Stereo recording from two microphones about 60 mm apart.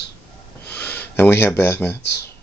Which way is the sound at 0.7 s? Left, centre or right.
Left.